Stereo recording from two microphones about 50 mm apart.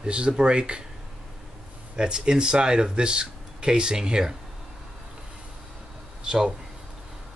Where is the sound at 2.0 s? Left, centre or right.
Centre.